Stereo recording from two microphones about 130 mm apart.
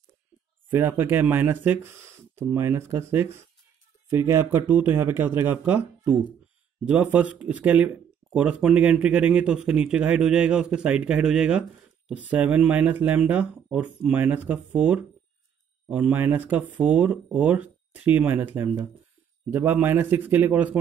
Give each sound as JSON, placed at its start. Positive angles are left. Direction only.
{"t": 0.7, "sound": "speech", "side_deg": -15}